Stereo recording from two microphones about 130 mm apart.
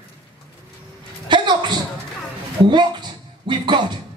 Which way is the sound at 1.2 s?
35° right (ahead or behind).